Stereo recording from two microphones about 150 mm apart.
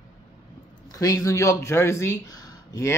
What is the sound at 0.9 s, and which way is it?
Speech, 20° left (ahead or behind).